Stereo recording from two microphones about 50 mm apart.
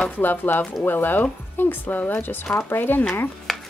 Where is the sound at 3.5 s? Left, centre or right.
Centre.